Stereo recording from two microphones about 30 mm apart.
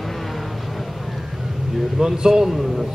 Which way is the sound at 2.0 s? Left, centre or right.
Centre.